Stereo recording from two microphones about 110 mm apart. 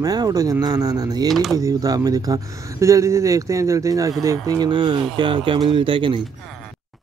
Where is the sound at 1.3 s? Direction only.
Centre (ahead or behind).